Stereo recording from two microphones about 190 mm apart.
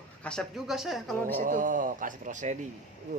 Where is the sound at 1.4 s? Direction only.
45° right (ahead or behind).